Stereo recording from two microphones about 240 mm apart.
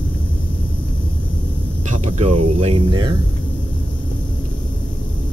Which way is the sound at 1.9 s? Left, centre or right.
Right.